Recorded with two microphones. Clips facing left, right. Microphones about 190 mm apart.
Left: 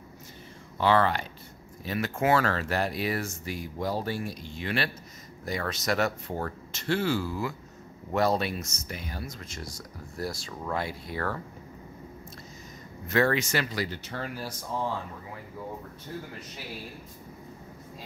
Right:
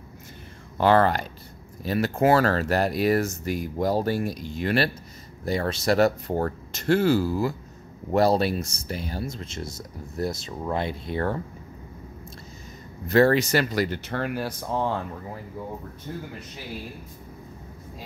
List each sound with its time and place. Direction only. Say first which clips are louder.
0.7 s speech: right 4 dB; 45° right (ahead or behind)
5.4 s speech: right 6 dB; 30° right (ahead or behind)
13.0 s speech: right 6 dB; 35° right (ahead or behind)
13.8 s speech: right 7 dB; 60° right (ahead or behind)